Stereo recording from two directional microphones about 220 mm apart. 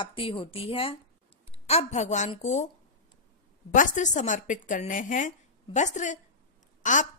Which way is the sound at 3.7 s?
35° left (ahead or behind).